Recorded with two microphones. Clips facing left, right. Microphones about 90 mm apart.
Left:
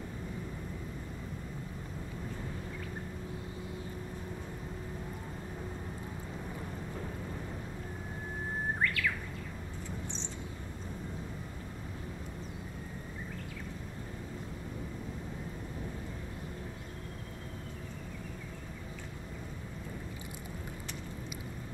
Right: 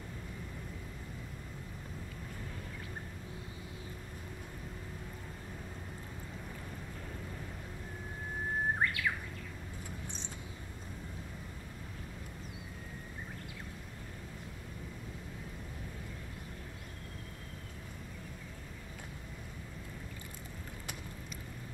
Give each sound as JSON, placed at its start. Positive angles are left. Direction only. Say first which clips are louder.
{"t": 8.8, "sound": "bird", "louder": "left 1 dB", "side_deg": -25}